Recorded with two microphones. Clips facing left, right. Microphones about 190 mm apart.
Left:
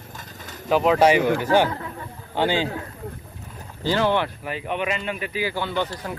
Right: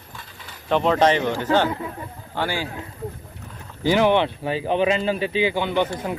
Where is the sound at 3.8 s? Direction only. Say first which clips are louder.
Right 4 dB; 15° right (ahead or behind).